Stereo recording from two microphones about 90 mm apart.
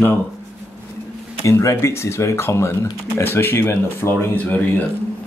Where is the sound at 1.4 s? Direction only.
35° left (ahead or behind).